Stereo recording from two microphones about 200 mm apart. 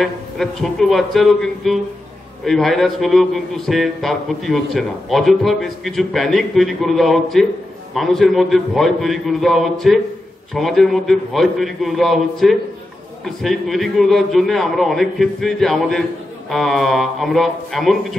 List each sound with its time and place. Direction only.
0.0 s a man's voice: centre (ahead or behind)